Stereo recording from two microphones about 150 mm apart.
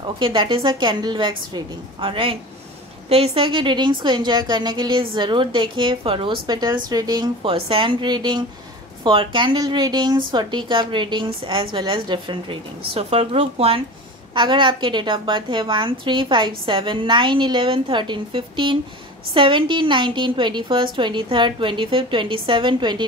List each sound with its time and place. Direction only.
0.0 s a woman's voice: 35° right (ahead or behind)